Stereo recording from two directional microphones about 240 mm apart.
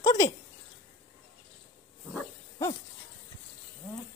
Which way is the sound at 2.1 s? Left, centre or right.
Centre.